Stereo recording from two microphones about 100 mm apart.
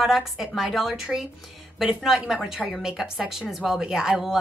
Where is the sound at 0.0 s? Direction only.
Centre (ahead or behind).